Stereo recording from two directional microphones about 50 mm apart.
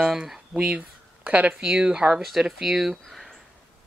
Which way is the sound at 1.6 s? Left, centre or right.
Centre.